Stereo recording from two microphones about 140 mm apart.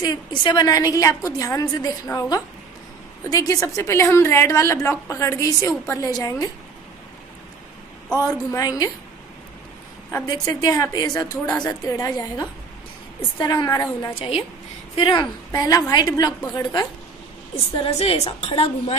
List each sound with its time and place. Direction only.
0.0 s a woman's voice: 30° left (ahead or behind)
8.2 s a woman's voice: 25° left (ahead or behind)
10.1 s a woman's voice: 25° left (ahead or behind)
15.0 s a woman's voice: 40° left (ahead or behind)
15.5 s a woman's voice: 25° left (ahead or behind)
17.8 s a woman's voice: 45° left (ahead or behind)